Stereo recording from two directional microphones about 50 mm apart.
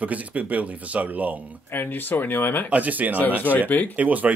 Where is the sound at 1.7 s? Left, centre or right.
Left.